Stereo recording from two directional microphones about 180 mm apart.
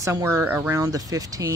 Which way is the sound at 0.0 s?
15° right (ahead or behind).